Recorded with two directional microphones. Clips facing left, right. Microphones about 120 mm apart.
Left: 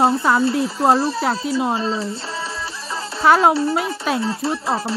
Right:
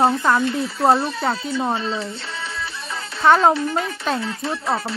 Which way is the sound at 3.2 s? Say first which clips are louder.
Left 1 dB; 5° left (ahead or behind).